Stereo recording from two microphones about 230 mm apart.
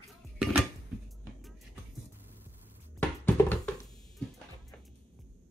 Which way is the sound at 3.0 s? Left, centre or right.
Centre.